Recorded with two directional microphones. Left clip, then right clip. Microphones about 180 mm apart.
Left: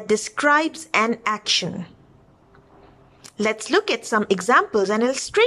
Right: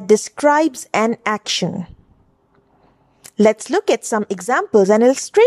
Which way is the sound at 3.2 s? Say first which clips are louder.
Right 9 dB; 40° right (ahead or behind).